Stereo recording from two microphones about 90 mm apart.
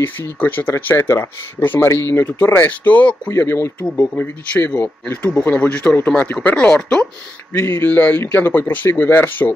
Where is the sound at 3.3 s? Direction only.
25° left (ahead or behind); by 7.0 s 10° left (ahead or behind).